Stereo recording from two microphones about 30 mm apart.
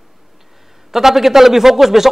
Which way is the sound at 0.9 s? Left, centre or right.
Centre.